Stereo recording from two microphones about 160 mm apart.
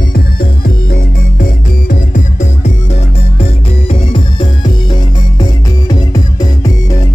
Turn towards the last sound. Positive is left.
turn(degrees=25)  # may be behind; listen again after turning